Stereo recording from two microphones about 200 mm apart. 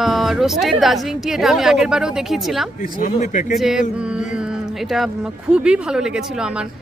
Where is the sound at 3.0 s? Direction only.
40° left (ahead or behind).